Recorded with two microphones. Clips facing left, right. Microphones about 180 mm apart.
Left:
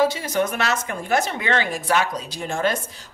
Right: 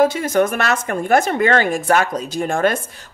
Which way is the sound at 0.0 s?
50° right (ahead or behind).